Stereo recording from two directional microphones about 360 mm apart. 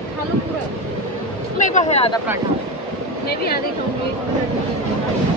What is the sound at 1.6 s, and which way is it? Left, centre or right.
Speech, centre.